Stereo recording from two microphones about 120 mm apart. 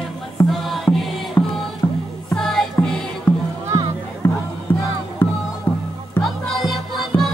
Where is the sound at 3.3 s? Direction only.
15° left (ahead or behind).